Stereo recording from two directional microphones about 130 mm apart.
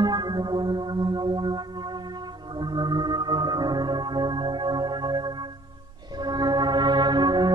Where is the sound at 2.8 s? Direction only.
35° right (ahead or behind).